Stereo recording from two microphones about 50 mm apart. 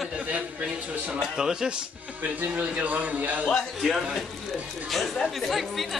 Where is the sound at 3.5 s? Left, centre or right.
Centre.